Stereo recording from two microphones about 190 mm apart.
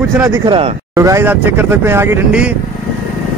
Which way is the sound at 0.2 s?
20° right (ahead or behind).